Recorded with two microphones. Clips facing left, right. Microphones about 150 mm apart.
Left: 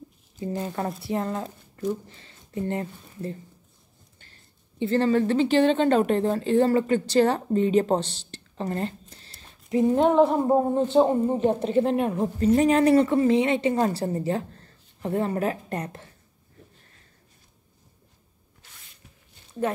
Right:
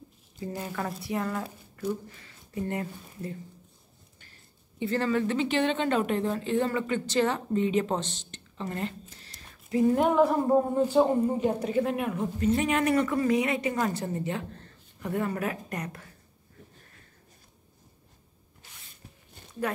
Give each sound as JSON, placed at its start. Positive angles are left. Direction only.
{"t": 0.6, "sound": "speech", "side_deg": 25}
{"t": 4.7, "sound": "a woman's voice", "side_deg": 30}